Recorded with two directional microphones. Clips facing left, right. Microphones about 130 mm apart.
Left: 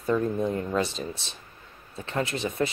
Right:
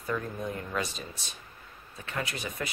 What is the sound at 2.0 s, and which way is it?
Speech, 30° left (ahead or behind).